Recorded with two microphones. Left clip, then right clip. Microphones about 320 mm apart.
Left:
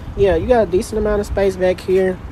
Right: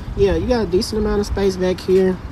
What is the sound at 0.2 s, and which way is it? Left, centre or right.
Speech, centre.